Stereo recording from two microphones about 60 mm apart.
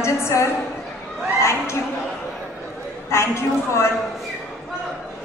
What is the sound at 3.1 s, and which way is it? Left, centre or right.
Speech, left.